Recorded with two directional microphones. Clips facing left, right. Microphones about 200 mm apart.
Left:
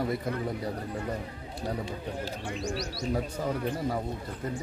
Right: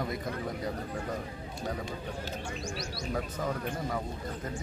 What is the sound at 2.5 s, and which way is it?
Speech, 35° left (ahead or behind).